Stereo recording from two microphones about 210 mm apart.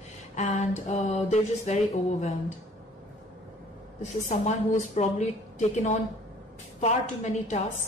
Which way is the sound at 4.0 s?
35° left (ahead or behind).